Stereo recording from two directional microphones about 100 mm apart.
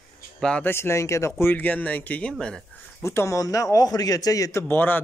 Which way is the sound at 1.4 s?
20° left (ahead or behind).